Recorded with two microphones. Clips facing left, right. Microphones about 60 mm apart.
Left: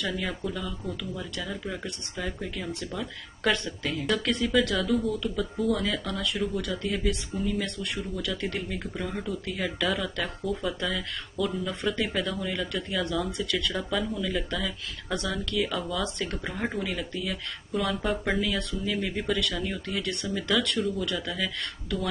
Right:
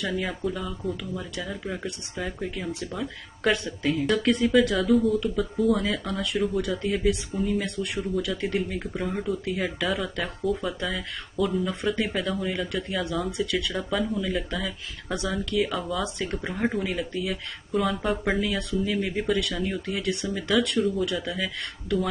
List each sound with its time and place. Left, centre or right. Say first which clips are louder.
0.0 s speech: right 3 dB; centre
4.2 s speech: right 5 dB; right
4.7 s speech: right 5 dB; centre